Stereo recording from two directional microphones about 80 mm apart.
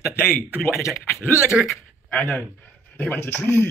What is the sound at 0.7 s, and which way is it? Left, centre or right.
Speech, left.